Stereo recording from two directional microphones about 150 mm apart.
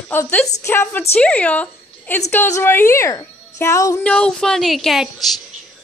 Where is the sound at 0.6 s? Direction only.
15° left (ahead or behind).